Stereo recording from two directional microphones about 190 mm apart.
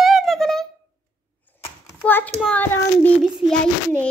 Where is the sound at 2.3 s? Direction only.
5° left (ahead or behind).